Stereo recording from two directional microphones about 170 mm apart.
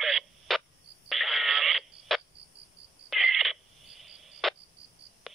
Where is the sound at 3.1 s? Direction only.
Centre (ahead or behind).